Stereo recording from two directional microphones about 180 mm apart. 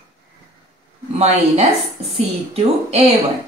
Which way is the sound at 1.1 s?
35° right (ahead or behind).